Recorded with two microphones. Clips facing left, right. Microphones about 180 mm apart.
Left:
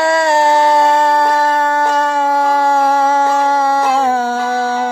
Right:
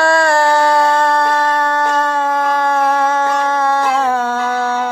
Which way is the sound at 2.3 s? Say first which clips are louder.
Left 3 dB; 30° left (ahead or behind).